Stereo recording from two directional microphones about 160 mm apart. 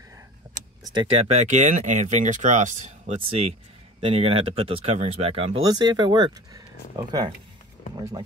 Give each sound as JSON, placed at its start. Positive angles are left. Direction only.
{"t": 0.9, "sound": "speech", "side_deg": -35}
{"t": 3.2, "sound": "speech", "side_deg": -35}
{"t": 5.6, "sound": "speech", "side_deg": -25}